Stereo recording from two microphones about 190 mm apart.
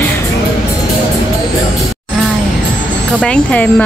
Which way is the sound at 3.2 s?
5° left (ahead or behind).